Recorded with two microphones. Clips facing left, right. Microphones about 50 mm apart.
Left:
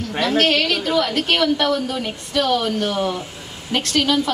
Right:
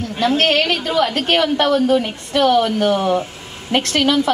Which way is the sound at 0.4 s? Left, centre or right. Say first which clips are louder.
Right 1 dB; right.